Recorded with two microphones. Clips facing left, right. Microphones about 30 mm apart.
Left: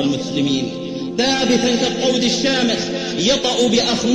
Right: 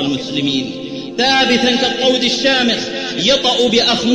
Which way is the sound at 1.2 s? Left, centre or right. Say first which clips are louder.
Right 4 dB; right.